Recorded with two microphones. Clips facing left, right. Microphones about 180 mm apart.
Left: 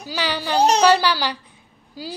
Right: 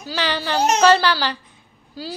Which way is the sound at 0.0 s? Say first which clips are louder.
Right 1 dB; 10° left (ahead or behind).